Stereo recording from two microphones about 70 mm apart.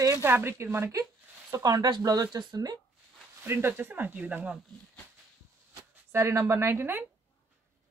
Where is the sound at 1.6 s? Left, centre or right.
Right.